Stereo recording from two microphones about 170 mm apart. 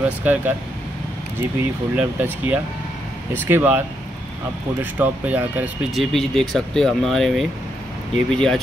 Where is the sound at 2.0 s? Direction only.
10° right (ahead or behind).